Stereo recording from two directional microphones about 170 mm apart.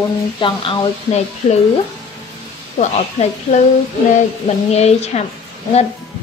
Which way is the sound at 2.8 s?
45° left (ahead or behind).